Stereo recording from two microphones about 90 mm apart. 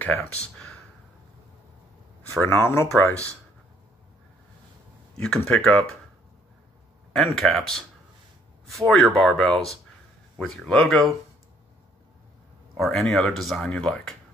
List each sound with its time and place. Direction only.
2.4 s speech: 25° left (ahead or behind)
5.1 s speech: 10° left (ahead or behind)
7.2 s speech: 5° left (ahead or behind)
8.9 s speech: 5° left (ahead or behind)
12.7 s speech: 5° left (ahead or behind)